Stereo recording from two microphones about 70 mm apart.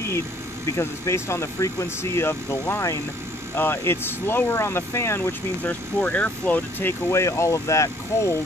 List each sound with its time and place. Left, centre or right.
0.7 s speech: left
3.5 s speech: left
5.6 s speech: left
7.2 s speech: left